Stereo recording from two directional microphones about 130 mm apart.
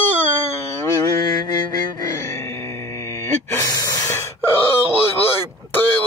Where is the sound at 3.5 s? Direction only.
25° left (ahead or behind).